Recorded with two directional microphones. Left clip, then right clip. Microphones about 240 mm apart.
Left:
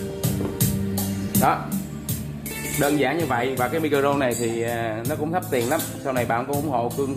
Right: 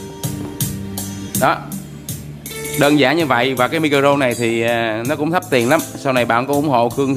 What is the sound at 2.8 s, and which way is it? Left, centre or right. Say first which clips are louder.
Speech: right 8 dB; right.